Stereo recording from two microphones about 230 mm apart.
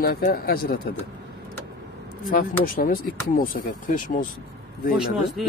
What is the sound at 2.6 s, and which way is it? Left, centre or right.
Speech, left.